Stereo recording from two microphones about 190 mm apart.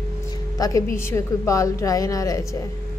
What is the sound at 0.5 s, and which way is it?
Speech, 20° left (ahead or behind).